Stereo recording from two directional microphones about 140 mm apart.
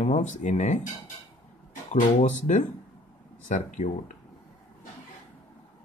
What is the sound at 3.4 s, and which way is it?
Speech, 65° left (ahead or behind).